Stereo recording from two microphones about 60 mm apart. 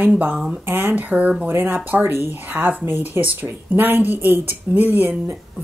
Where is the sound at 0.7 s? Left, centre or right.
Right.